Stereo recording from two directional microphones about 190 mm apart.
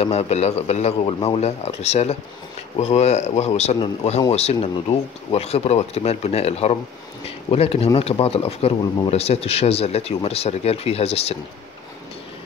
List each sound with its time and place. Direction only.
0.0 s speech: 35° left (ahead or behind)